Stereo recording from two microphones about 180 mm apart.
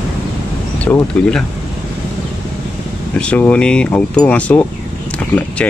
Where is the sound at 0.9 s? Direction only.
15° left (ahead or behind).